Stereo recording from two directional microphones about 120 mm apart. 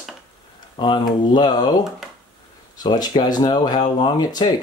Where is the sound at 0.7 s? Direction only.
40° left (ahead or behind).